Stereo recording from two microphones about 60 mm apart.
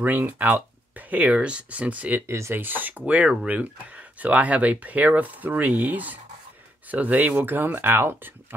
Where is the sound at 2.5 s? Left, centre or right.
Right.